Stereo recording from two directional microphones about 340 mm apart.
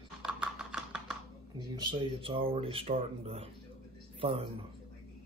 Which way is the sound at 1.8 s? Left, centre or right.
Centre.